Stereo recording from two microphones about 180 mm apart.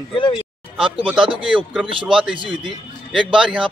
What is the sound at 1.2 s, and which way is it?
Speech, 30° right (ahead or behind).